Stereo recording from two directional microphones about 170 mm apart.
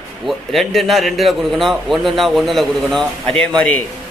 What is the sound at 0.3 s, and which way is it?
A man's voice, centre (ahead or behind).